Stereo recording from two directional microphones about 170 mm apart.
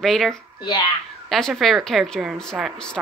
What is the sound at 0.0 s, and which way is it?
Speech, centre (ahead or behind).